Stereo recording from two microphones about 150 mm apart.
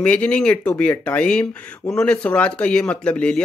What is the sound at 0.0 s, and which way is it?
Speech, 10° left (ahead or behind).